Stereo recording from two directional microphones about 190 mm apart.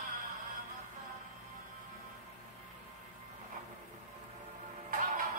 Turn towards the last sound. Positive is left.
turn(degrees=-45)  # may be behind; listen again after turning